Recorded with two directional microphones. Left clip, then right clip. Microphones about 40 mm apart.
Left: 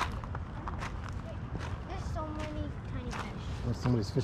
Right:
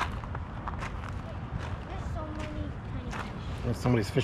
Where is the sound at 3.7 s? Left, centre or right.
Left.